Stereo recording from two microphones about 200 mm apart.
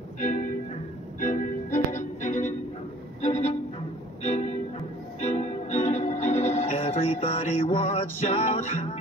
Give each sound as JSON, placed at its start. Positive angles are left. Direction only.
{"t": 0.2, "sound": "music", "side_deg": 40}